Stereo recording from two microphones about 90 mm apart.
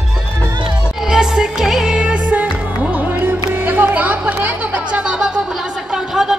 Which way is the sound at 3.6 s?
20° right (ahead or behind).